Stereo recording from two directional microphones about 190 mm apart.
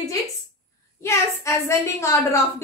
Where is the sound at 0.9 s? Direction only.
15° left (ahead or behind).